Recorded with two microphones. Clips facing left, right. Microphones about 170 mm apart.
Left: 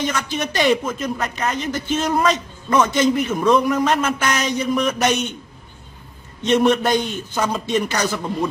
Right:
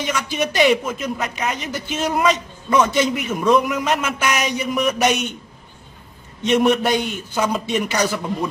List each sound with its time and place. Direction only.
0.0 s a man's voice: 10° right (ahead or behind)
6.4 s a man's voice: 5° right (ahead or behind)